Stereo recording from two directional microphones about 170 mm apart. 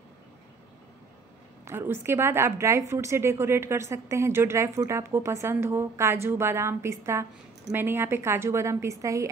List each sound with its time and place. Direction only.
1.6 s a woman's voice: 15° right (ahead or behind)